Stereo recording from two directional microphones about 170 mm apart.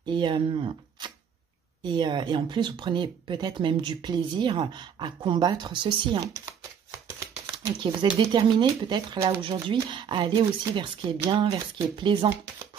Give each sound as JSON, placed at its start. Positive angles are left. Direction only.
{"t": 0.0, "sound": "speech", "side_deg": -25}
{"t": 7.8, "sound": "speech", "side_deg": -25}